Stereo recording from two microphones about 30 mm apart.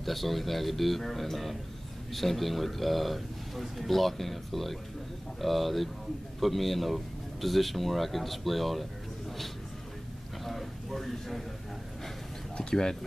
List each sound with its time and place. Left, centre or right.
0.0 s speech: centre
10.4 s a sound: centre
12.5 s speech: left